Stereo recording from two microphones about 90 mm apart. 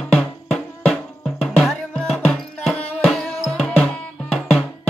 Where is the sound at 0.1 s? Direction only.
Centre (ahead or behind).